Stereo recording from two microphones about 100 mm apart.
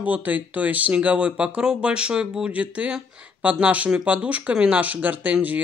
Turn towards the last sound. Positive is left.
turn(degrees=-15)  # may be behind; listen again after turning